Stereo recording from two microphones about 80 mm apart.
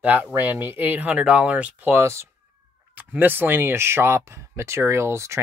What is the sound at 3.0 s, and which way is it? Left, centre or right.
Speech, right.